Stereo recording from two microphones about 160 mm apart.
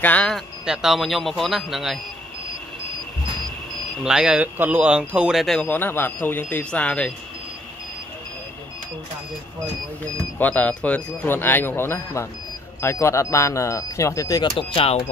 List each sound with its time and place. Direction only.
0.0 s speech: 5° left (ahead or behind)
4.0 s speech: 5° right (ahead or behind)
10.4 s speech: 10° left (ahead or behind); by 15.0 s 35° left (ahead or behind)